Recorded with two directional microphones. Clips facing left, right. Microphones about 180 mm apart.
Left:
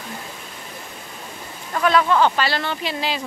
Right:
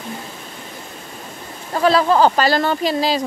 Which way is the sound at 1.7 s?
30° right (ahead or behind).